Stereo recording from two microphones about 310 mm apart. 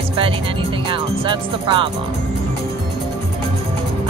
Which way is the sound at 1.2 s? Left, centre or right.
Centre.